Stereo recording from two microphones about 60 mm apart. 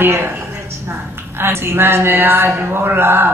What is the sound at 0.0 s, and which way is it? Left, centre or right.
Speech, right.